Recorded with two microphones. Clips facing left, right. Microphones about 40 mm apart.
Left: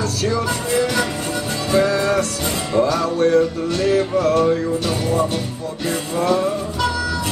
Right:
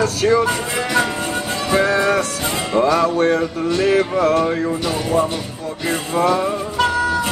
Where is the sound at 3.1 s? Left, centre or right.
Right.